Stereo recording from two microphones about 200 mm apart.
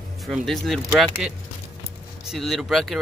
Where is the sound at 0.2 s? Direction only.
Centre (ahead or behind).